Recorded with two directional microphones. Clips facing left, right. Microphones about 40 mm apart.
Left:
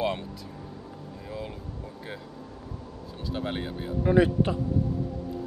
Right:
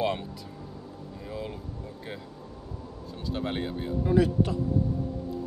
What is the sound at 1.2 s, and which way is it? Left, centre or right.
Speech, centre.